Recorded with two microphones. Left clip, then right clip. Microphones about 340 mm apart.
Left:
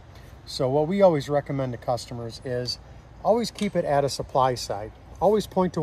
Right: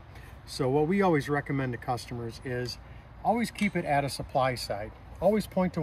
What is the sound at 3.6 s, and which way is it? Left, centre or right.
Speech, centre.